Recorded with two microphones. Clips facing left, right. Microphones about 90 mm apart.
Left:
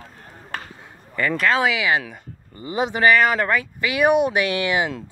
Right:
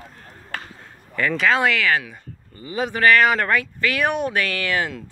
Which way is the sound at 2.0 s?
25° left (ahead or behind).